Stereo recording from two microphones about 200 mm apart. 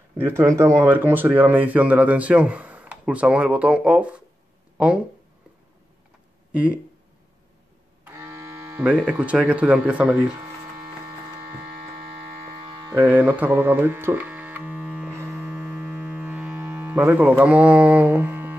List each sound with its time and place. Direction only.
0.2 s speech: 10° right (ahead or behind)
6.5 s speech: 5° right (ahead or behind)
8.0 s speech: 15° right (ahead or behind)
12.6 s a sound: 20° right (ahead or behind)
12.9 s mains hum: 10° right (ahead or behind)